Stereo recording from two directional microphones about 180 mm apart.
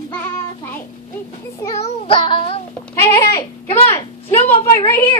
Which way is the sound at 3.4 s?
35° left (ahead or behind).